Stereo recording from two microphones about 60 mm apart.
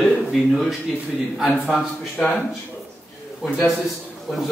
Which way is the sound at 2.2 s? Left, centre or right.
Left.